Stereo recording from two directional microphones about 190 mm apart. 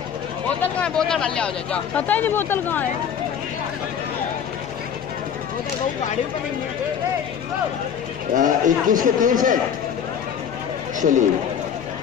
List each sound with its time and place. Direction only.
0.6 s speech: 5° left (ahead or behind)
8.4 s a man's voice: 45° right (ahead or behind)
11.0 s a man's voice: 40° right (ahead or behind)